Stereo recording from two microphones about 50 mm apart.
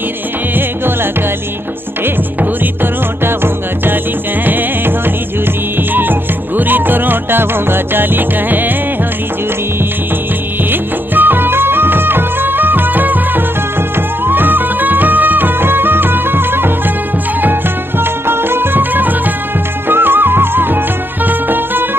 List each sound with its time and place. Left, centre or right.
2.8 s music: right
10.7 s music of bollywood: right
14.2 s music: right